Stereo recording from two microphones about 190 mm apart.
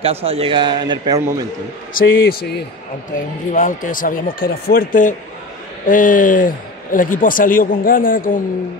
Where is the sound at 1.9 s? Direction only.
55° left (ahead or behind).